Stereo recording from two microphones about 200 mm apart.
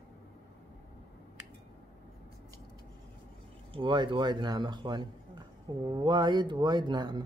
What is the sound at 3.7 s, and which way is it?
Speech, 25° right (ahead or behind).